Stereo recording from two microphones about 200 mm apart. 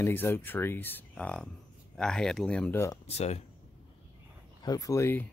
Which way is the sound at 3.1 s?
30° left (ahead or behind).